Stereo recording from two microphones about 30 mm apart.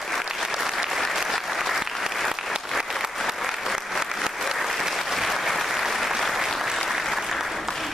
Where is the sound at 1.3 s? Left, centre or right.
Centre.